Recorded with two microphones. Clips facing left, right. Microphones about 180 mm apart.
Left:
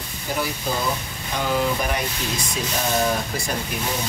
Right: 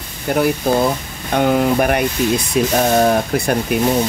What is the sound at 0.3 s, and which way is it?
Speech, 60° right (ahead or behind).